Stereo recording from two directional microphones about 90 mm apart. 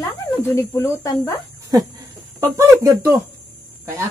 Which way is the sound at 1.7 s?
45° right (ahead or behind).